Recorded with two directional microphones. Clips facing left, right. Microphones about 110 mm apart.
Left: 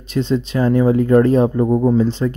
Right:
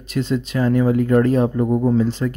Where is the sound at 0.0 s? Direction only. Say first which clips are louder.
Left 3 dB; 25° left (ahead or behind).